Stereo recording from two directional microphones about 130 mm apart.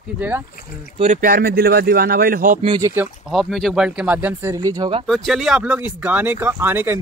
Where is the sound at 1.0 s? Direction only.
65° right (ahead or behind).